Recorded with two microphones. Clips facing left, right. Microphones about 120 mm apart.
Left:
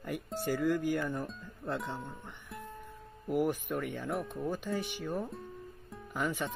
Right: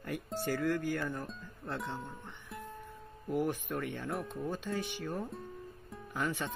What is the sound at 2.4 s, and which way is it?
Music, centre (ahead or behind).